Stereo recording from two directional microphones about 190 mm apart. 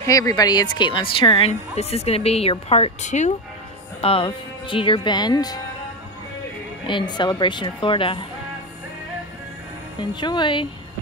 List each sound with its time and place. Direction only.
0.0 s a woman's voice: 15° left (ahead or behind)
6.9 s speech: 25° left (ahead or behind)
9.9 s speech: 25° left (ahead or behind)